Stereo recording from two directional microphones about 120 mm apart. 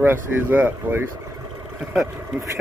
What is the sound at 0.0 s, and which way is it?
Speech, 15° right (ahead or behind).